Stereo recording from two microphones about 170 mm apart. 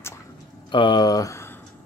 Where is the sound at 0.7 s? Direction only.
25° left (ahead or behind).